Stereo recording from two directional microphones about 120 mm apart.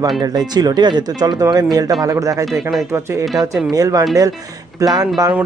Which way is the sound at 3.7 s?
30° right (ahead or behind).